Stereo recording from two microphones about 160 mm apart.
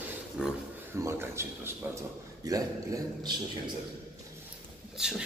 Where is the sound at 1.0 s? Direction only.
15° right (ahead or behind).